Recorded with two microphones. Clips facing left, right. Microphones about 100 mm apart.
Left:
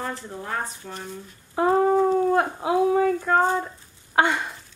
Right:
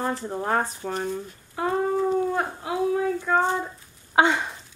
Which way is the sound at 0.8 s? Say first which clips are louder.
Right 8 dB; 60° right (ahead or behind).